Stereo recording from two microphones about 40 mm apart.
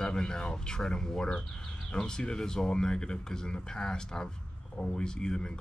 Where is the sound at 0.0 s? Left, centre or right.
Centre.